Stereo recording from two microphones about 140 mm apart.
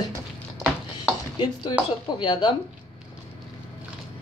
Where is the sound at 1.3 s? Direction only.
35° left (ahead or behind).